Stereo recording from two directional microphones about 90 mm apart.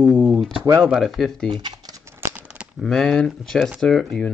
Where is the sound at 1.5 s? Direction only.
50° right (ahead or behind).